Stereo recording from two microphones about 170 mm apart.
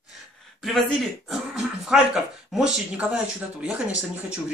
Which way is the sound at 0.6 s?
Centre (ahead or behind).